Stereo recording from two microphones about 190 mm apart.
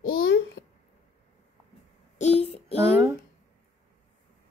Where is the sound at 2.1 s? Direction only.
35° left (ahead or behind).